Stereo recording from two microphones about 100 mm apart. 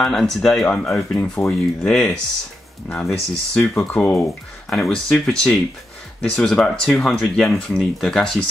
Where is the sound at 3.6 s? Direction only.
15° left (ahead or behind).